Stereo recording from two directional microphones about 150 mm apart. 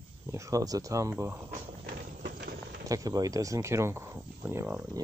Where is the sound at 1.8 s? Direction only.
80° right.